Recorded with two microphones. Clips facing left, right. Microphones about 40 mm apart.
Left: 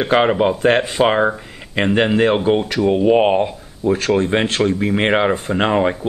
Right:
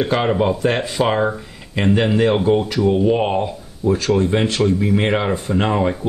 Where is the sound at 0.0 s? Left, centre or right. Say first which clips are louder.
Left 3 dB; left.